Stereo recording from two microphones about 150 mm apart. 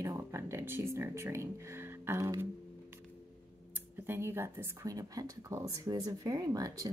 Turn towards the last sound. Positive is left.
turn(degrees=-25)  # may be behind; listen again after turning